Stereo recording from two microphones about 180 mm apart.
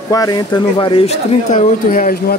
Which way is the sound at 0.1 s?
20° left (ahead or behind).